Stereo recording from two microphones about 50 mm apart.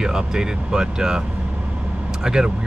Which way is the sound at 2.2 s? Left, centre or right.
Centre.